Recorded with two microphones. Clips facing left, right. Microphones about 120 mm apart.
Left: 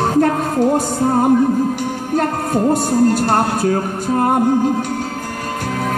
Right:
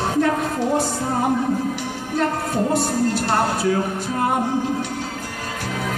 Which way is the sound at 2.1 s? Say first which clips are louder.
Left 3 dB; 50° left (ahead or behind).